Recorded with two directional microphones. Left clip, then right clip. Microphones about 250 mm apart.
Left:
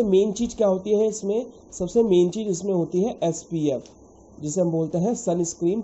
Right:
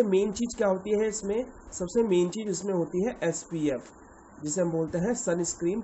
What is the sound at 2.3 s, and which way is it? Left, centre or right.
Speech, centre.